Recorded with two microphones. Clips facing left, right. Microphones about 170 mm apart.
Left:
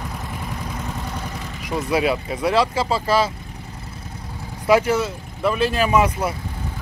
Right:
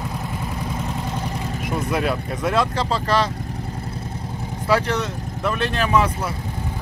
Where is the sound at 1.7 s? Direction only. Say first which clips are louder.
Left 3 dB; centre (ahead or behind).